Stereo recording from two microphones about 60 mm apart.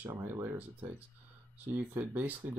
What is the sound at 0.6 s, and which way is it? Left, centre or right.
Speech, right.